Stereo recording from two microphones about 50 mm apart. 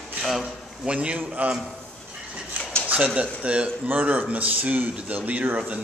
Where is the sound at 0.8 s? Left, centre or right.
Right.